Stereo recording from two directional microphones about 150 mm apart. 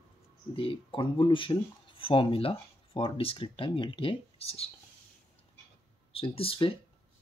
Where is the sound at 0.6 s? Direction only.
35° left (ahead or behind).